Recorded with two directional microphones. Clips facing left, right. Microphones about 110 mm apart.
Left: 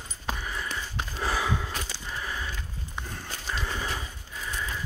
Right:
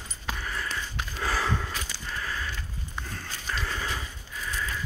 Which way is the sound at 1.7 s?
30° left (ahead or behind).